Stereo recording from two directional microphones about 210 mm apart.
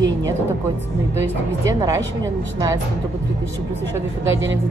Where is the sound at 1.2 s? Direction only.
15° right (ahead or behind).